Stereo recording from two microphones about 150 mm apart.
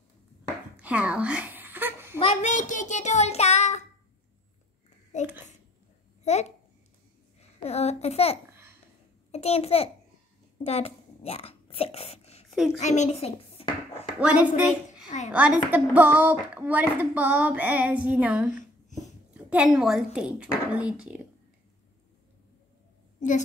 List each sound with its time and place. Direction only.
0.7 s a sound: 10° right (ahead or behind)
2.1 s a woman's voice: 40° left (ahead or behind)
2.5 s child singing: 55° left (ahead or behind)
5.1 s child singing: 50° left (ahead or behind)
6.2 s a child's voice: 50° left (ahead or behind)
8.5 s babbling: 15° right (ahead or behind)
9.3 s a child's voice: 45° left (ahead or behind)
10.6 s a sound: 45° left (ahead or behind)
14.2 s speech: 10° right (ahead or behind)
18.9 s a sound: 55° left (ahead or behind)
19.3 s speech: 5° right (ahead or behind)